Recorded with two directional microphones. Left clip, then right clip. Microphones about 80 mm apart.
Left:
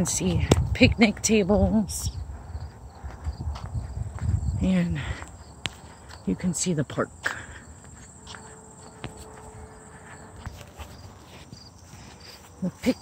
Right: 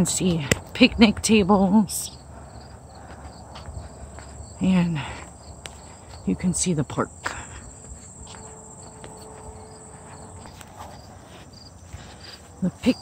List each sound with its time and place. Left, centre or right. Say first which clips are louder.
0.0 s speech: right 3 dB; right
0.7 s speech: right 4 dB; centre
4.6 s speech: right 3 dB; centre
6.2 s speech: right 3 dB; centre
12.6 s cricket: right 4 dB; centre